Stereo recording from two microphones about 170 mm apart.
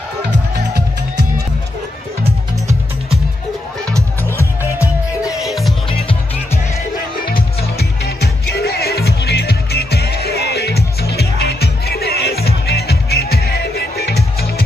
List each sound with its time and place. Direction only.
4.2 s music: 15° left (ahead or behind)
5.4 s music: centre (ahead or behind)
5.9 s music: 30° left (ahead or behind)
7.7 s music: 70° left (ahead or behind)